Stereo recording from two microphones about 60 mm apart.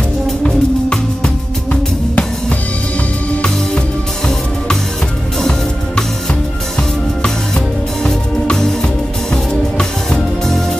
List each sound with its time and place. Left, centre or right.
0.4 s music: centre
7.2 s music: centre